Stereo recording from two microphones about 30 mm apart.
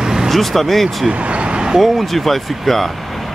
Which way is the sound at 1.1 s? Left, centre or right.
Right.